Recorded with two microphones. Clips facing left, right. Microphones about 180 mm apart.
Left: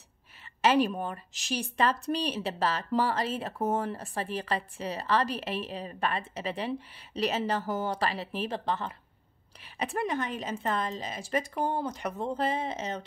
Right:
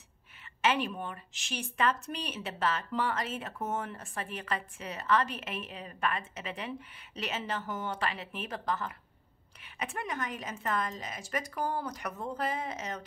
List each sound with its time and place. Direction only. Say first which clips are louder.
0.6 s a woman's voice: left 6 dB; 40° left (ahead or behind)